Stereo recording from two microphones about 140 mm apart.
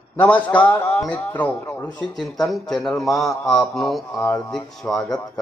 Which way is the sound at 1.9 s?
30° left (ahead or behind).